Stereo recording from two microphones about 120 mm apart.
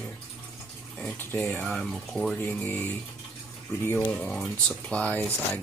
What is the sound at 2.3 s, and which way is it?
Speech, 15° left (ahead or behind).